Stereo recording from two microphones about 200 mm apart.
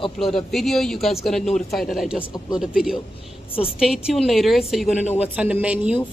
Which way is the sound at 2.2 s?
20° left (ahead or behind).